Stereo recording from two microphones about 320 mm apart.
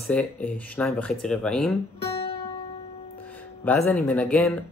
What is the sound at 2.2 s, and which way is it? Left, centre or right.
Music, centre.